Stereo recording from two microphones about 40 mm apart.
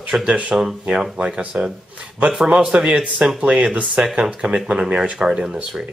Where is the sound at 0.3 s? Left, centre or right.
Right.